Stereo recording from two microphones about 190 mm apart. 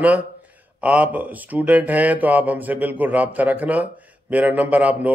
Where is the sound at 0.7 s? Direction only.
5° right (ahead or behind).